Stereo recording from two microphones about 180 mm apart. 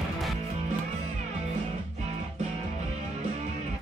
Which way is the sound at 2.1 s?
40° right (ahead or behind).